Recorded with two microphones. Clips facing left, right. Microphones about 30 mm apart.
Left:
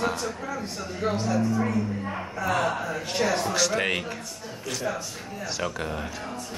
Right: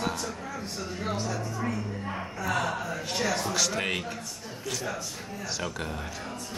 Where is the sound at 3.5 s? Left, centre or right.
Centre.